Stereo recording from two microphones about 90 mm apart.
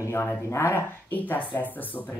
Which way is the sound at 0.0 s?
25° left (ahead or behind).